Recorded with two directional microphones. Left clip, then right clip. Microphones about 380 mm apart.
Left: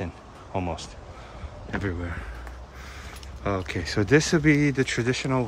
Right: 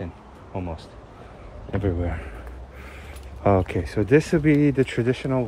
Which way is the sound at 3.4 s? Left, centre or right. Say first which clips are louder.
Right 7 dB; centre.